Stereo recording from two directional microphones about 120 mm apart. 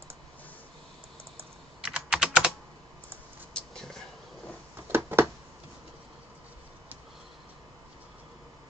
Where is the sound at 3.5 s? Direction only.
5° left (ahead or behind).